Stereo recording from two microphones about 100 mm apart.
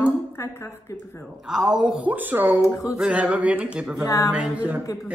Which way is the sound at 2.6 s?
30° left (ahead or behind).